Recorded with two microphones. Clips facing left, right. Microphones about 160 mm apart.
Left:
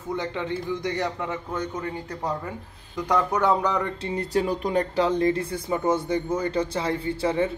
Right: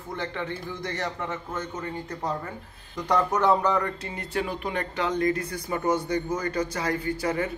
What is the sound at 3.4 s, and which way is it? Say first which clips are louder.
Speech: even; 15° left (ahead or behind).